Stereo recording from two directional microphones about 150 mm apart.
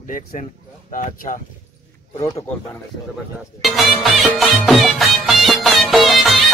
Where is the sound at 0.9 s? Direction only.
65° left (ahead or behind).